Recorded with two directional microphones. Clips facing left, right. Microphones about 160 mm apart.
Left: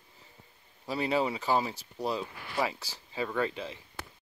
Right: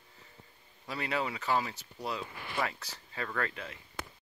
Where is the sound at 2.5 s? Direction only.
10° left (ahead or behind).